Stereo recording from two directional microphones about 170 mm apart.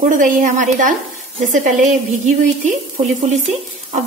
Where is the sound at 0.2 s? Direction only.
50° right (ahead or behind).